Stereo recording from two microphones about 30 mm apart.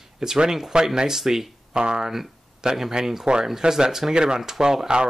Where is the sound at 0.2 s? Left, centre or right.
Centre.